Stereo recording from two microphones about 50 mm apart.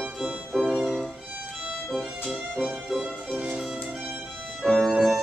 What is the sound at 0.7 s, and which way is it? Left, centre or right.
Violin, centre.